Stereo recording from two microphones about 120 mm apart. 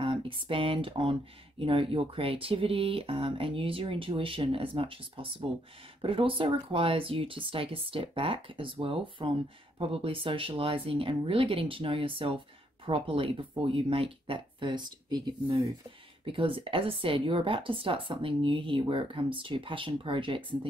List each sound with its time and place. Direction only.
0.0 s a sound: 45° right (ahead or behind)
1.6 s speech: 50° right (ahead or behind)
16.3 s speech: 50° right (ahead or behind)